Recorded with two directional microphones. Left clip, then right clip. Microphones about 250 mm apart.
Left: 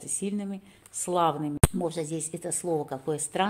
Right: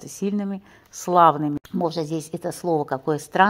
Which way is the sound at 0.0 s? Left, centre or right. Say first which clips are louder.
Right 6 dB; centre.